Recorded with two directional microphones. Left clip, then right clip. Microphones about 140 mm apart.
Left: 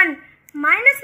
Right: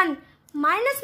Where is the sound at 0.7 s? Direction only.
50° right (ahead or behind).